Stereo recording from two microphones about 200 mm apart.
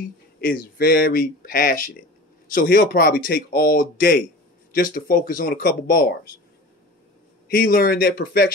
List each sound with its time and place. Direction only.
0.4 s speech: 50° left (ahead or behind)
7.4 s speech: 45° left (ahead or behind)